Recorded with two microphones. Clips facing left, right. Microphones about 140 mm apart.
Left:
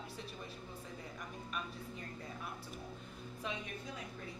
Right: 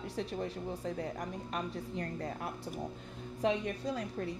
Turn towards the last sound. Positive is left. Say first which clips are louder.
# right 10 dB
turn(degrees=-80)